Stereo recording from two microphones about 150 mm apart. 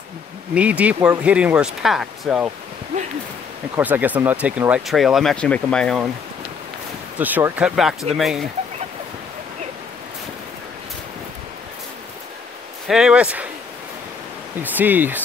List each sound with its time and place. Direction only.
0.6 s speech: 10° right (ahead or behind)
3.7 s speech: 15° right (ahead or behind); by 6.0 s 5° left (ahead or behind)
7.2 s speech: 10° right (ahead or behind)
12.8 s speech: 5° right (ahead or behind)
14.6 s speech: 10° right (ahead or behind)